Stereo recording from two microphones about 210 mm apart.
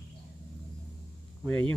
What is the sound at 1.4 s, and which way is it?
Speech, 5° left (ahead or behind).